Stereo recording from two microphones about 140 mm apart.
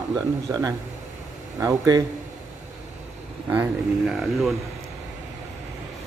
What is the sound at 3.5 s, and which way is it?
Speech, 10° right (ahead or behind).